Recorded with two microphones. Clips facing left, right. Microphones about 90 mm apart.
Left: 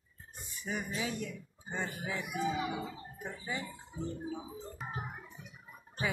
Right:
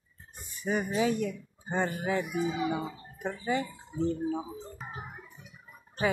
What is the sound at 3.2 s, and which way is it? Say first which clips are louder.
Speech: right 10 dB; 75° right (ahead or behind).